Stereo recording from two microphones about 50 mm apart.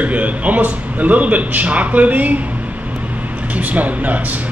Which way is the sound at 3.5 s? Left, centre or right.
Right.